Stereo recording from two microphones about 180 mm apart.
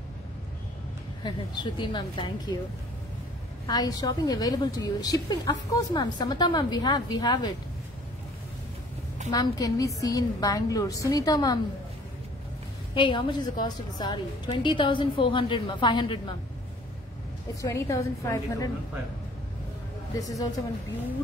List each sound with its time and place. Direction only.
1.2 s a woman's voice: 25° left (ahead or behind)
3.6 s a woman's voice: 20° left (ahead or behind)
9.3 s a woman's voice: 20° left (ahead or behind)
12.9 s a woman's voice: 25° left (ahead or behind)
17.6 s a woman's voice: 15° left (ahead or behind)
20.2 s a woman's voice: 20° left (ahead or behind)